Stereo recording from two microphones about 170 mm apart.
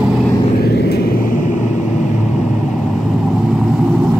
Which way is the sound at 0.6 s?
70° left (ahead or behind).